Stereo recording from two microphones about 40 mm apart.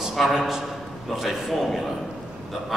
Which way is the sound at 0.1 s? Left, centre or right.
Centre.